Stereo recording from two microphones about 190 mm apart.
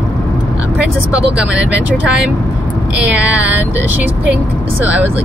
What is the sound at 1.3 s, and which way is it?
Speech, 5° right (ahead or behind).